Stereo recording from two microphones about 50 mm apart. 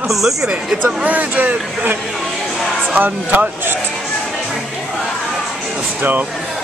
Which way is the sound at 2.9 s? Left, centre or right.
Right.